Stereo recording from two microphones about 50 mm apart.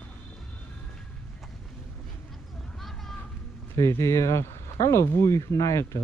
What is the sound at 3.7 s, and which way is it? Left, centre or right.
Speech, left.